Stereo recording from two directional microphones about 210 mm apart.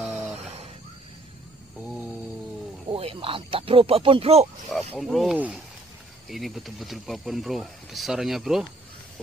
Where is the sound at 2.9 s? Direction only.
25° right (ahead or behind).